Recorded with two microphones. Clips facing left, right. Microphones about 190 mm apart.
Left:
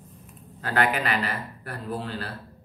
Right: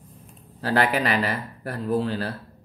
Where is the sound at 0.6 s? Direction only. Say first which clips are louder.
Right 3 dB; 35° right (ahead or behind).